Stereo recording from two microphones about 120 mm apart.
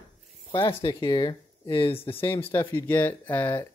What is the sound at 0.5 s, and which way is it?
Speech, 45° left (ahead or behind).